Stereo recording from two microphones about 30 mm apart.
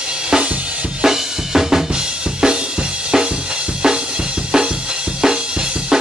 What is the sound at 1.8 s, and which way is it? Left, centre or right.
Music, right.